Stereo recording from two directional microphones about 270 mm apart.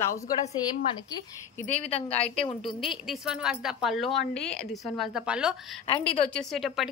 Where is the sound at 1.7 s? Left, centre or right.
Left.